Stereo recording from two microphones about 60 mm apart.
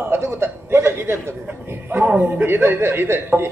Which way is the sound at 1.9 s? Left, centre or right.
Right.